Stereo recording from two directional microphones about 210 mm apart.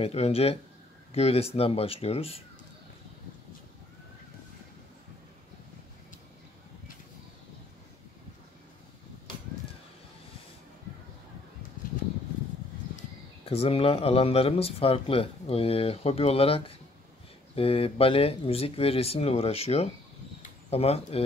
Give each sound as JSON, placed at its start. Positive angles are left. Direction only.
{"t": 0.0, "sound": "speech", "side_deg": 30}
{"t": 13.5, "sound": "speech", "side_deg": 25}